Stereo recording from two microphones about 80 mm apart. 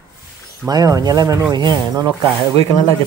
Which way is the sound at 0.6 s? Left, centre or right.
Right.